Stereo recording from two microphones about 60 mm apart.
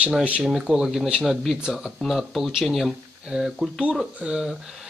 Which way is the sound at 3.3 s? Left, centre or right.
Centre.